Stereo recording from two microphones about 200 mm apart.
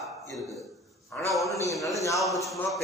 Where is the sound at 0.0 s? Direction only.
Centre (ahead or behind).